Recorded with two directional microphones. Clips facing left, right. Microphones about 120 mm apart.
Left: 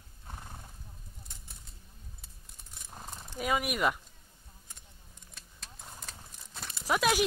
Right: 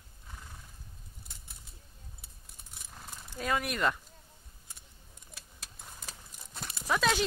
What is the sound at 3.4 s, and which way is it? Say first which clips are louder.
Speech: left 1 dB; 10° left (ahead or behind).